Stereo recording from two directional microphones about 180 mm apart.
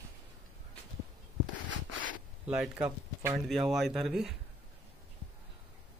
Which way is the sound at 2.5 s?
5° right (ahead or behind).